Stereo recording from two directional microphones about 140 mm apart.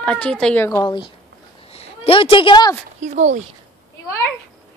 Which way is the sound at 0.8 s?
35° left (ahead or behind).